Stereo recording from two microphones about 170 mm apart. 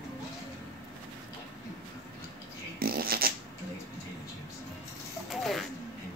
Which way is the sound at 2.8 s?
60° right (ahead or behind).